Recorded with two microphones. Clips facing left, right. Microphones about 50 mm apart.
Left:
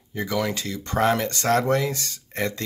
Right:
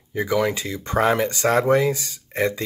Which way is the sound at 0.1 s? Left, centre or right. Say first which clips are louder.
Right 4 dB; centre.